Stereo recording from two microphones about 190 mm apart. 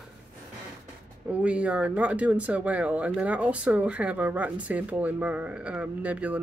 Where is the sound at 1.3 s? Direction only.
5° right (ahead or behind).